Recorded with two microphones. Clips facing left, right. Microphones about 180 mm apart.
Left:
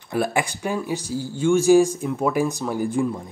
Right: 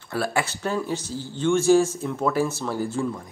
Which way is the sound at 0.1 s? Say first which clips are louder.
Left 3 dB; 15° left (ahead or behind).